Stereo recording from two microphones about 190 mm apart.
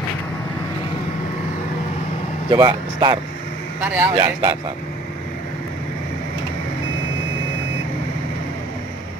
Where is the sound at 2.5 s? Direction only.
25° right (ahead or behind).